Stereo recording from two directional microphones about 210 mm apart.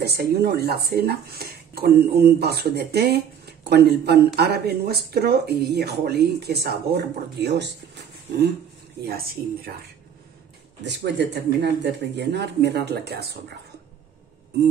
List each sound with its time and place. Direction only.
0.0 s speech: 50° right (ahead or behind)
10.8 s speech: 55° right (ahead or behind)